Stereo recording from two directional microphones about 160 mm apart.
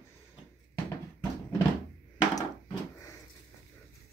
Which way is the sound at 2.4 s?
25° left (ahead or behind).